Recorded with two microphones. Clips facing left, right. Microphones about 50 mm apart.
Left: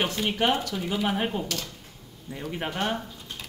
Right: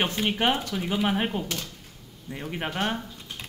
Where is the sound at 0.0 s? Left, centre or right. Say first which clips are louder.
Right 1 dB; right; by 3.0 s centre.